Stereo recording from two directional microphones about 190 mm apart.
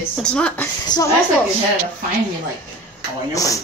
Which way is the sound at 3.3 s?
15° left (ahead or behind).